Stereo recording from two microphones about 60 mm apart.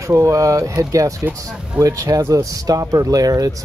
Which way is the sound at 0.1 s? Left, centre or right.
Right.